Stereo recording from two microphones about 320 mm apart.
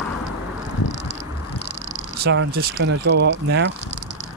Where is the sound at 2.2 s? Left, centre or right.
Right.